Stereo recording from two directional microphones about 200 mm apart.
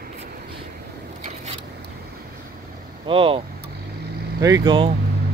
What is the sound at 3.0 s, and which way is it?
Speech, 25° right (ahead or behind).